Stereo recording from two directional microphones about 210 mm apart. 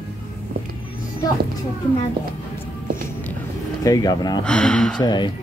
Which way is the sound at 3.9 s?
20° left (ahead or behind).